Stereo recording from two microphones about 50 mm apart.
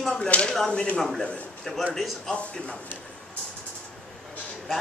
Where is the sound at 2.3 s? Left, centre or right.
Left.